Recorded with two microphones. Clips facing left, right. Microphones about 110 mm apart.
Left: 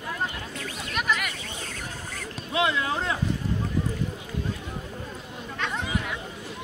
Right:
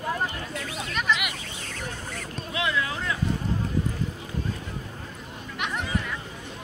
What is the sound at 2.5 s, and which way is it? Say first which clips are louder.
Speech: left 3 dB; 30° left (ahead or behind).